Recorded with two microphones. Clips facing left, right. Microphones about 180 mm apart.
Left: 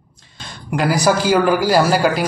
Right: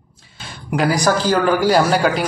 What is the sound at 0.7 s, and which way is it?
Speech, centre (ahead or behind).